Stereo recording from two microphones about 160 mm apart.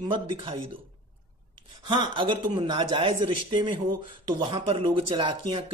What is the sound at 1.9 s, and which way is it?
Speech, 30° right (ahead or behind).